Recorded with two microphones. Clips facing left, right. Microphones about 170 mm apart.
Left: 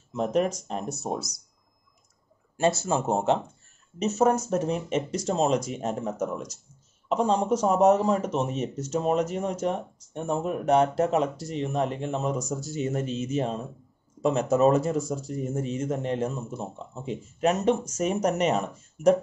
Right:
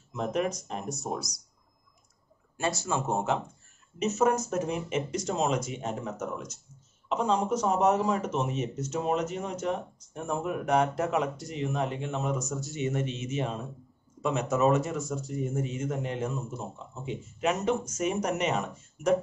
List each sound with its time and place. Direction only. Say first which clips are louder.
0.1 s speech: left 4 dB; 35° left (ahead or behind)
2.8 s speech: left 4 dB; 30° left (ahead or behind)